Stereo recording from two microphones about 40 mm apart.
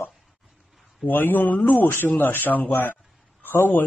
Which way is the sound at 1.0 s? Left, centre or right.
Left.